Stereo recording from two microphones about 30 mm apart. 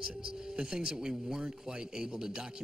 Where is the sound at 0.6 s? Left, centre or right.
Right.